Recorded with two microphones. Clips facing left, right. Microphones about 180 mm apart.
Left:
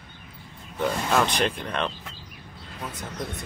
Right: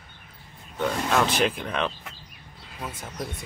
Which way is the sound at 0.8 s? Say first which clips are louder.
Even; centre (ahead or behind).